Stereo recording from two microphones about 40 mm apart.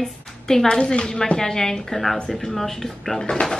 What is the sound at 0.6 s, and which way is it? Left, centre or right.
Speech, left.